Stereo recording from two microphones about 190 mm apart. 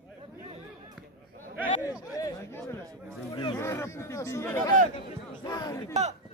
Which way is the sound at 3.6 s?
15° left (ahead or behind).